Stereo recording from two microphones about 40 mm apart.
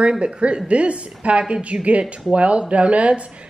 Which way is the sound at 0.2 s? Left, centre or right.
Right.